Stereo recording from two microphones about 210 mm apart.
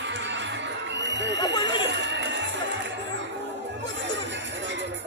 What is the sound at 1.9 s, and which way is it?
Music, 60° right (ahead or behind).